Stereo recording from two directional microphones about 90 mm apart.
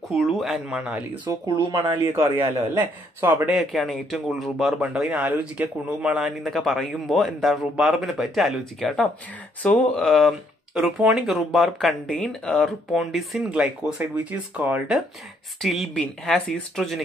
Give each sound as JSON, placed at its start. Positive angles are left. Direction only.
{"t": 0.1, "sound": "a man's voice", "side_deg": 0}
{"t": 1.8, "sound": "a man's voice", "side_deg": -35}
{"t": 2.3, "sound": "a man's voice", "side_deg": -20}
{"t": 3.5, "sound": "a man's voice", "side_deg": 0}
{"t": 9.6, "sound": "speech", "side_deg": 15}
{"t": 10.0, "sound": "a man's voice", "side_deg": 0}
{"t": 15.6, "sound": "a man's voice", "side_deg": 0}